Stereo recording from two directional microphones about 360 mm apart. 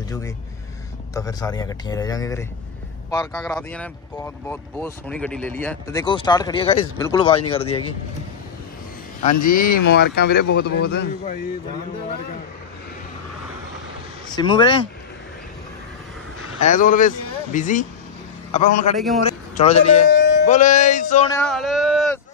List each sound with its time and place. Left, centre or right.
1.1 s speech: centre
9.2 s speech: left
14.3 s speech: centre
16.5 s a man's voice: left
20.1 s music: left
21.3 s speech: centre